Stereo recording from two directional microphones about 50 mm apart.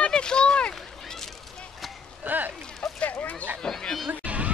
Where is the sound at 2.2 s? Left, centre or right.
Right.